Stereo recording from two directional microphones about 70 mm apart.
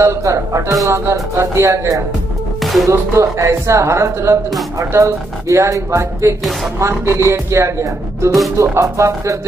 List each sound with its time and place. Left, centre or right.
0.0 s speech: right
2.6 s music: centre
2.9 s speech: right